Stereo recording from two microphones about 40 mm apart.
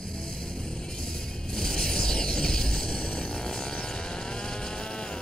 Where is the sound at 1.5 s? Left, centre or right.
Centre.